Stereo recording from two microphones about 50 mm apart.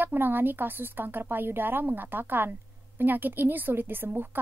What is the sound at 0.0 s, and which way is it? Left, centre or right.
A woman's voice, right.